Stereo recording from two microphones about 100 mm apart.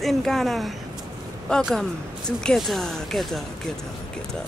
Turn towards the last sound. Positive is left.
turn(degrees=0)  # may be behind; listen again after turning